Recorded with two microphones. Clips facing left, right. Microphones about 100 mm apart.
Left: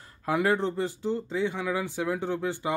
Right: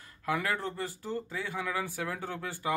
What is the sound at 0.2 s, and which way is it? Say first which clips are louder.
Speech: left 7 dB; 25° left (ahead or behind).